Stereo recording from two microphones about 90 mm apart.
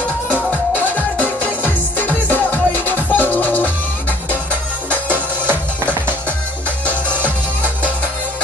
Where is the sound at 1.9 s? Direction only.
20° left (ahead or behind).